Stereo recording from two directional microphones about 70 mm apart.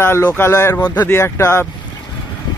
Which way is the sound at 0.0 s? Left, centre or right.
Left.